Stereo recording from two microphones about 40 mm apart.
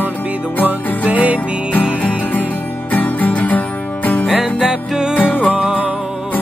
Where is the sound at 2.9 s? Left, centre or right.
Left.